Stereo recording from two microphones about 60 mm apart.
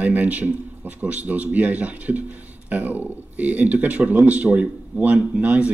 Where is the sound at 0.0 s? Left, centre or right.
Right.